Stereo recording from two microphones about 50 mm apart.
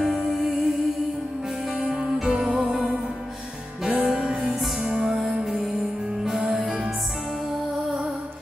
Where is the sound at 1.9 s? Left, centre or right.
Centre.